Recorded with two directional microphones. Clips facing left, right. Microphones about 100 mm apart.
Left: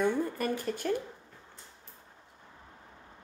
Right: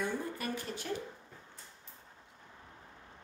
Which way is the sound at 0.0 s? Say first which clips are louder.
Left 7 dB; 50° left (ahead or behind).